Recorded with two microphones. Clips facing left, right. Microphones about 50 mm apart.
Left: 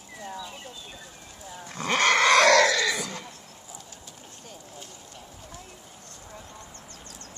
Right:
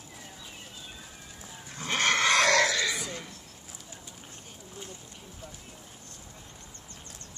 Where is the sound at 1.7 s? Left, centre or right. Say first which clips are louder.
Left 5 dB; left.